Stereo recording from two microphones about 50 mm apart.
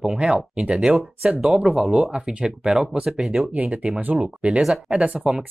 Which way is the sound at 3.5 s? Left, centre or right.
Right.